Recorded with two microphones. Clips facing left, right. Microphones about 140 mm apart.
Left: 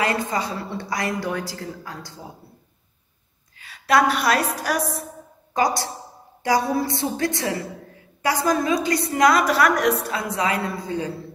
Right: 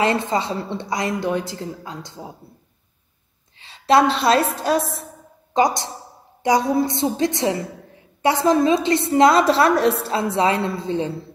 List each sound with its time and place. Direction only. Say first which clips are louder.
0.0 s a woman's voice: right 3 dB; 25° right (ahead or behind)
3.5 s a woman's voice: right 3 dB; 25° right (ahead or behind)